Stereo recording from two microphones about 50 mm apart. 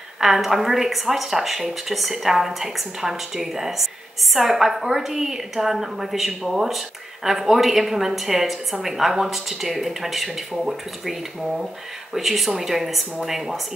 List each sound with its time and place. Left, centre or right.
0.2 s a woman's voice: centre